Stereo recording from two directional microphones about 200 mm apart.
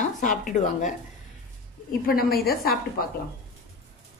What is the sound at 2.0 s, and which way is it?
A woman's voice, 50° left (ahead or behind).